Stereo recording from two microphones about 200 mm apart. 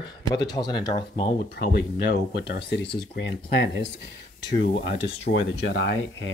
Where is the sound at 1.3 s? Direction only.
50° left (ahead or behind).